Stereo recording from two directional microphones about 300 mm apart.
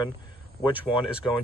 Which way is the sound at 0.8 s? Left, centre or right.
Centre.